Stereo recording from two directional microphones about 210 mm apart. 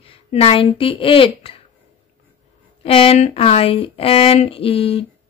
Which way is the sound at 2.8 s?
25° left (ahead or behind).